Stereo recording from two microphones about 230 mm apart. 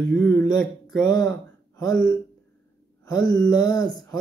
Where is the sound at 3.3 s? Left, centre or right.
Centre.